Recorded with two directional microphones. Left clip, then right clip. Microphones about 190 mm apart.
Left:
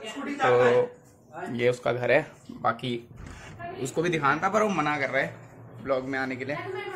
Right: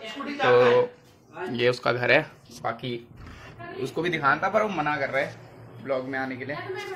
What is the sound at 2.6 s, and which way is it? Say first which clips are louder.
Speech: left 4 dB; 35° left (ahead or behind).